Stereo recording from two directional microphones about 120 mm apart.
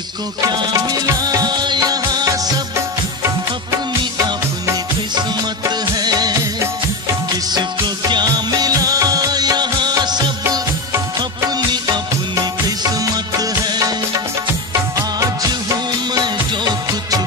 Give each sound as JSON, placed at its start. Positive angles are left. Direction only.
{"t": 0.5, "sound": "music", "side_deg": -30}
{"t": 5.7, "sound": "music", "side_deg": -35}
{"t": 8.1, "sound": "music", "side_deg": -35}
{"t": 11.1, "sound": "music of bollywood", "side_deg": -35}